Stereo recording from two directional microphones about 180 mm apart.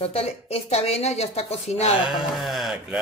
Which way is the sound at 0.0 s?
35° left (ahead or behind).